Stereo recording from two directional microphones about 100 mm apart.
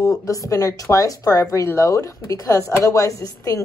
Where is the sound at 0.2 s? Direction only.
35° left (ahead or behind).